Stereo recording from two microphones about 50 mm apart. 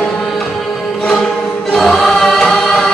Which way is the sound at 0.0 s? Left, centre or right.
Centre.